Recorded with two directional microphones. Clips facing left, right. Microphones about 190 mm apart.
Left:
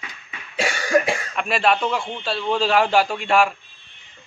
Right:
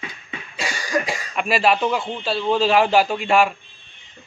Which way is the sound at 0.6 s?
65° left (ahead or behind).